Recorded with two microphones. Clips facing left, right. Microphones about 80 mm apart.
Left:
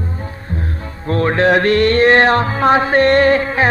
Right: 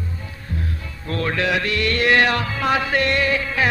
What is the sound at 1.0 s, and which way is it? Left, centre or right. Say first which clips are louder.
Music: left 8 dB; left.